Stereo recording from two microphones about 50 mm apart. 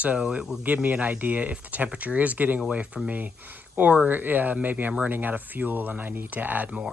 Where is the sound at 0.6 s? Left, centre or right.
Right.